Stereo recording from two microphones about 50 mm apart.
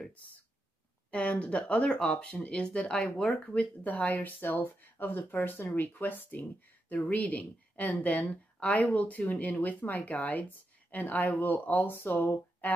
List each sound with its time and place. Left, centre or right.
1.1 s speech: left
3.5 s a woman's voice: left